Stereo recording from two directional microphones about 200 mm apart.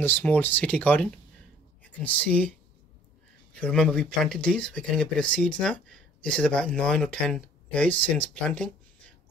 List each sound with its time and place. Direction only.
0.0 s speech: 10° left (ahead or behind)
3.5 s speech: 5° left (ahead or behind)